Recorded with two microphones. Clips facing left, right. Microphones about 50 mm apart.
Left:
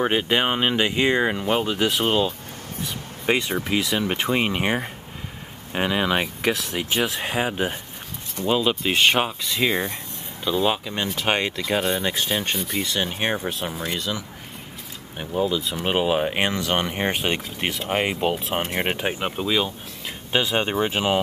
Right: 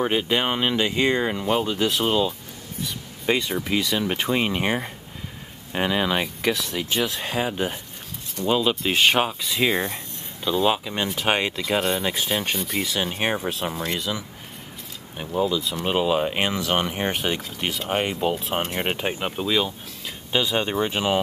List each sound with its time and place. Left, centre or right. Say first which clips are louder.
0.0 s speech: left 1 dB; centre
2.0 s speech: left 1 dB; left; by 14.2 s centre
15.8 s speech: even; centre
16.3 s speech: even; centre
20.3 s speech: left 1 dB; centre